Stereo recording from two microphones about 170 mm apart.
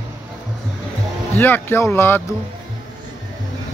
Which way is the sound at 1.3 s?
10° left (ahead or behind).